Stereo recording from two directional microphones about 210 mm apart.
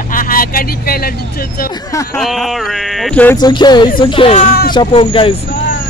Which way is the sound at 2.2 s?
Centre (ahead or behind).